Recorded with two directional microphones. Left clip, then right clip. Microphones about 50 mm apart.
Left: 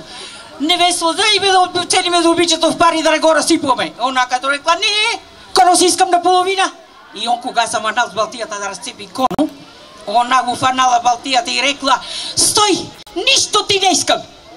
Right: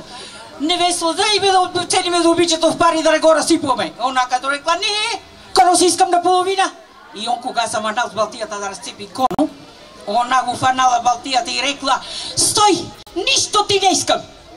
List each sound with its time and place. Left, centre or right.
0.2 s a man's voice: left